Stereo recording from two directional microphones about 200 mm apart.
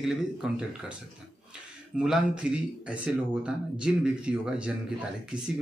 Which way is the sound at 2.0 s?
5° right (ahead or behind).